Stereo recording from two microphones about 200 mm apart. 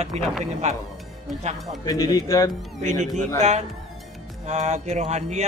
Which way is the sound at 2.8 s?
35° right (ahead or behind).